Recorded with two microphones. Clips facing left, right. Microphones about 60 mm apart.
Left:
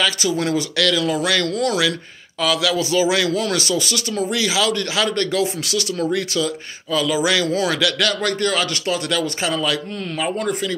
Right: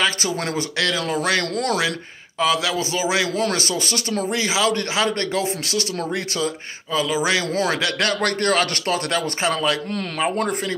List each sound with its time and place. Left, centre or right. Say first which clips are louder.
0.0 s speech: left 2 dB; right
4.3 s speech: even; right
7.4 s speech: left 2 dB; right
8.2 s a man's voice: right 1 dB; right